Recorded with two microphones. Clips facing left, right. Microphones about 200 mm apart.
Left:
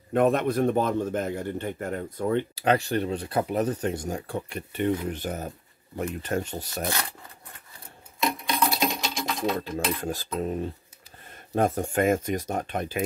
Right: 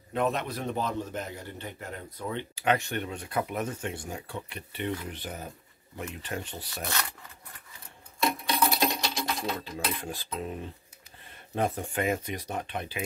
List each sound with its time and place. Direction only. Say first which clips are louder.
0.1 s a man's voice: left 7 dB; 50° left (ahead or behind)
2.5 s a man's voice: left 4 dB; 35° left (ahead or behind)
8.3 s a sound: left 1 dB; centre (ahead or behind)
9.6 s a man's voice: left 6 dB; 45° left (ahead or behind)